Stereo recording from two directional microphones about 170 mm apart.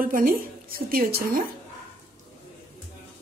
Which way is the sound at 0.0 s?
55° right (ahead or behind).